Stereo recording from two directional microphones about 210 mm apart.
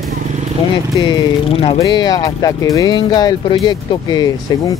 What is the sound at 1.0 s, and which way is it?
Speech, 20° left (ahead or behind).